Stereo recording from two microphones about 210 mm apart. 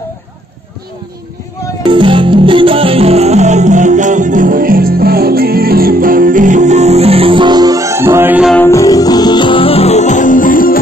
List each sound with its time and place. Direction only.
1.9 s music: 25° right (ahead or behind); by 8.5 s 5° right (ahead or behind)
8.5 s music: 15° left (ahead or behind); by 10.8 s 40° left (ahead or behind)